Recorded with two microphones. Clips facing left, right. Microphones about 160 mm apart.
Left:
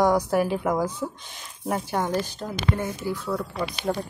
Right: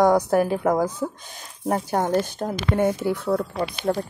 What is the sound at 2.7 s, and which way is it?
Speech, 65° right (ahead or behind).